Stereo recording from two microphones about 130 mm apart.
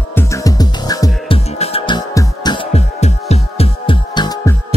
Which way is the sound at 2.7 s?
55° left (ahead or behind).